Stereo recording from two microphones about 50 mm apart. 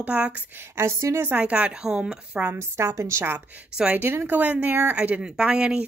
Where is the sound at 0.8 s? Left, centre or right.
Right.